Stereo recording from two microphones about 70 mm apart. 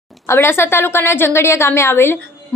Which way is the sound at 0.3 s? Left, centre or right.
Left.